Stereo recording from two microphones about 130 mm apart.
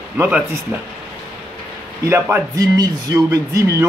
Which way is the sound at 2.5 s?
30° right (ahead or behind).